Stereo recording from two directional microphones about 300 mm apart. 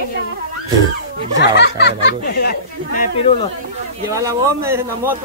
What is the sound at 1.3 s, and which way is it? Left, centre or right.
Speech, left.